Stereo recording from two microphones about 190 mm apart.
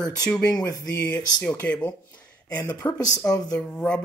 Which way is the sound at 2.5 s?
20° left (ahead or behind).